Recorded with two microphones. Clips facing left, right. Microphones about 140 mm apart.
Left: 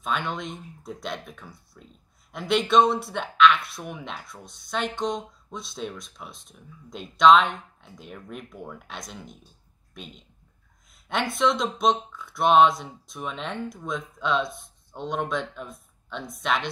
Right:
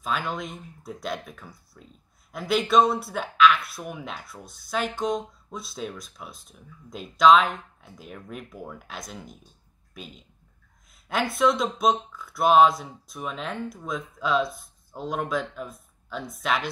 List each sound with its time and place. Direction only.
0.0 s speech: centre (ahead or behind)